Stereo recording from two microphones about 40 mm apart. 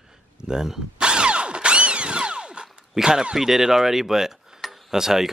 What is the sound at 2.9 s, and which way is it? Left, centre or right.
Speech, centre.